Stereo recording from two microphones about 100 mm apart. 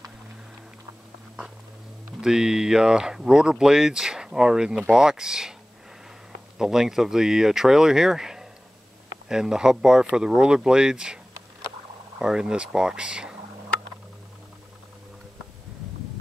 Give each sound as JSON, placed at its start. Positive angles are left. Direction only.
{"t": 2.2, "sound": "speech", "side_deg": -5}
{"t": 6.6, "sound": "speech", "side_deg": -5}
{"t": 12.2, "sound": "speech", "side_deg": -5}